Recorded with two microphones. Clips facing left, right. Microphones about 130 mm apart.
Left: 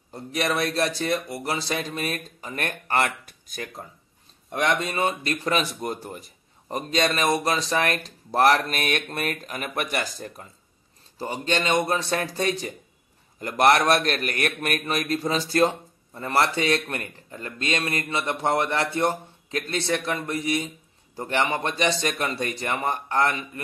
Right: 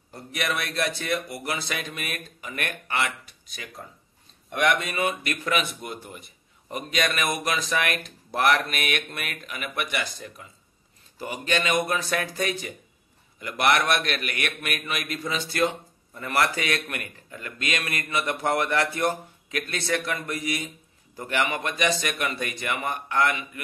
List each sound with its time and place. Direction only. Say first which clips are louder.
0.1 s a man's voice: left 4 dB; 35° left (ahead or behind)
4.5 s a man's voice: even; 30° left (ahead or behind)